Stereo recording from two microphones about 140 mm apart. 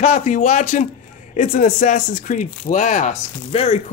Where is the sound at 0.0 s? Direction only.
60° left (ahead or behind).